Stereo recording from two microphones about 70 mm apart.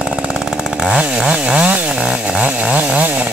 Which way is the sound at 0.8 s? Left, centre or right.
Centre.